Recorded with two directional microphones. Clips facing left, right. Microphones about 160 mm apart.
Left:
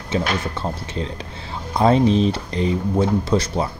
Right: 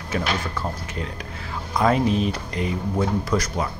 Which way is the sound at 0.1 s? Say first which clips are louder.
Left 3 dB; 25° left (ahead or behind).